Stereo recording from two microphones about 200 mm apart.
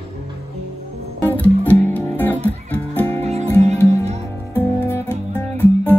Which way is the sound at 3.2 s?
30° right (ahead or behind).